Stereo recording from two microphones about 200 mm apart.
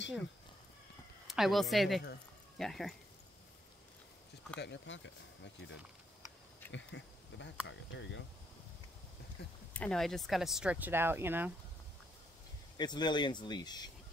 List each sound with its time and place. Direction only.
1.2 s a woman's voice: centre (ahead or behind)
4.6 s speech: 60° left (ahead or behind)
9.4 s a sound: 55° left (ahead or behind)
9.8 s speech: 5° left (ahead or behind)
12.7 s speech: 20° left (ahead or behind)